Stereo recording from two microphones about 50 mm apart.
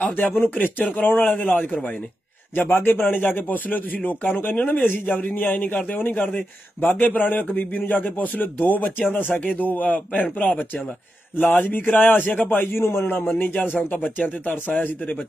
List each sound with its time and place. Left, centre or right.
0.1 s a man's voice: left
12.8 s a man's voice: left